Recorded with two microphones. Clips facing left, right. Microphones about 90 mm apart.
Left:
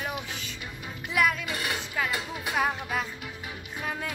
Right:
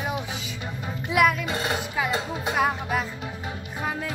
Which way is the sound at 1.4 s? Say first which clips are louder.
Right 5 dB; 25° right (ahead or behind).